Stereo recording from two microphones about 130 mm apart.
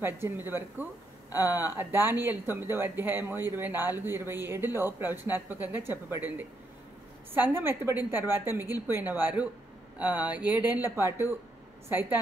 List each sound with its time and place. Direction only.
0.0 s speech: 15° right (ahead or behind)